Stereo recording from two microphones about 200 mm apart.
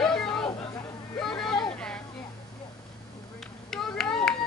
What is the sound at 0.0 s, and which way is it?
Chatter, 5° left (ahead or behind).